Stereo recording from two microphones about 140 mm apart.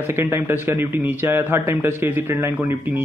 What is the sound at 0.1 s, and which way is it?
A man's voice, 15° right (ahead or behind).